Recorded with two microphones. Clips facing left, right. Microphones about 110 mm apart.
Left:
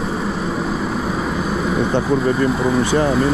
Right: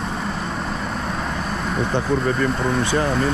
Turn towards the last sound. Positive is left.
turn(degrees=10)  # may be behind; listen again after turning